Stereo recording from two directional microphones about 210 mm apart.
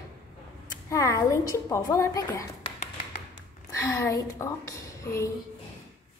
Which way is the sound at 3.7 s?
15° left (ahead or behind).